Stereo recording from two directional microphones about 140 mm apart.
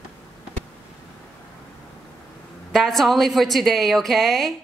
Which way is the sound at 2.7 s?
Centre (ahead or behind).